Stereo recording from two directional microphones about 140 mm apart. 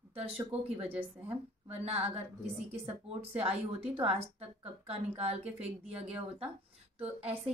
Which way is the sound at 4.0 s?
45° right (ahead or behind).